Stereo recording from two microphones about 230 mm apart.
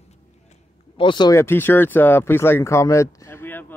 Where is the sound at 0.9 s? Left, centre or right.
Left.